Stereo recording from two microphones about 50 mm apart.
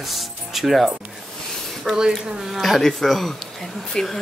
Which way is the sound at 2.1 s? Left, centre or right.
Centre.